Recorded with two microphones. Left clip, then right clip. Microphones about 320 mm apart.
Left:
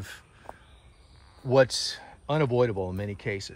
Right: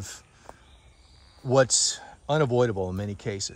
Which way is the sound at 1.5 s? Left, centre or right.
Right.